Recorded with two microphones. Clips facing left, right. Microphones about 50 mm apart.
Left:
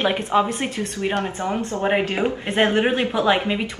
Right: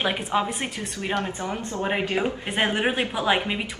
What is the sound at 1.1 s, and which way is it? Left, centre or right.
Speech, left.